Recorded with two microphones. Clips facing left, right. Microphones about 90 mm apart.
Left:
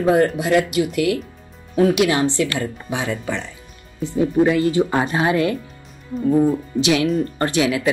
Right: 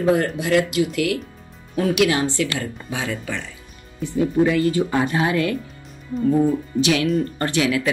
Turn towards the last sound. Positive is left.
turn(degrees=25)  # may be behind; listen again after turning